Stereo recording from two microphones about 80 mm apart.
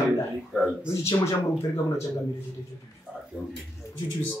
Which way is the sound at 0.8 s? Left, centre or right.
Left.